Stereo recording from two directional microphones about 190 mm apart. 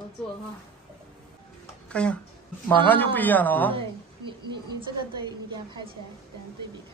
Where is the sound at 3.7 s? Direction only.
25° right (ahead or behind).